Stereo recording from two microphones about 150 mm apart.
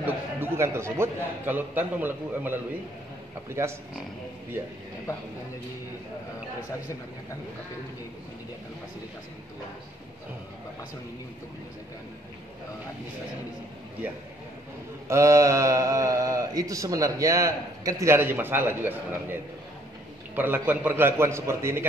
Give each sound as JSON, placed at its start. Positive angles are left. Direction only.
{"t": 0.0, "sound": "a man's voice", "side_deg": -15}
{"t": 15.0, "sound": "speech", "side_deg": -20}
{"t": 20.3, "sound": "a man's voice", "side_deg": -15}